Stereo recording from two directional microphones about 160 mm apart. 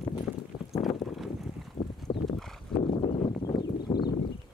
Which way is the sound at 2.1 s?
30° left (ahead or behind).